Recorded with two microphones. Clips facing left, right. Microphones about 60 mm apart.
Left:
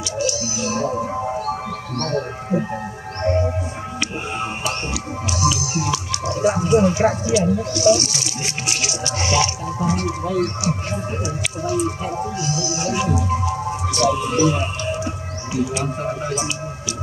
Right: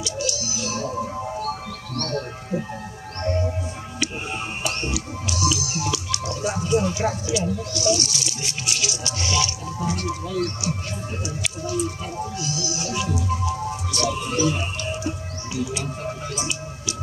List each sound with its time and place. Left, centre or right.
0.2 s a sound: centre
3.2 s music: left
4.6 s music: left
5.4 s music: centre
6.2 s speech: left
12.7 s music: left